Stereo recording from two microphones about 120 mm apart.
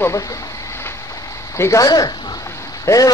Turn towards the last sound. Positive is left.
turn(degrees=30)  # may be behind; listen again after turning